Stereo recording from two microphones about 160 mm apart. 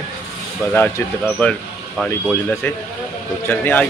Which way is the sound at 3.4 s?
15° left (ahead or behind).